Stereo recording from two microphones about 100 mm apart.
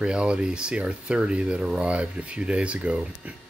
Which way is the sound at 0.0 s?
10° right (ahead or behind).